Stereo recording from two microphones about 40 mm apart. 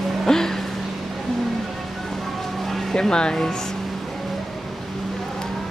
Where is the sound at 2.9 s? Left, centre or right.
Left.